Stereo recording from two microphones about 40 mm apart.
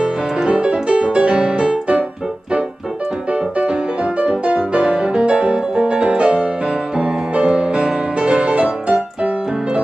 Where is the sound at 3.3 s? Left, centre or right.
Right.